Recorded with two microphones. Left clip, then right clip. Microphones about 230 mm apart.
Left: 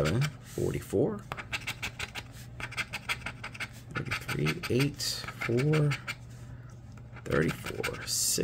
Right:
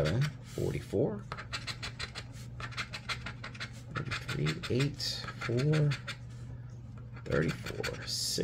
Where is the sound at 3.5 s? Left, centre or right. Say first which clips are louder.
Left 3 dB; centre.